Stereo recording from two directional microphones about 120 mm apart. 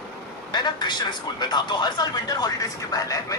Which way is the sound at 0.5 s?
40° left (ahead or behind).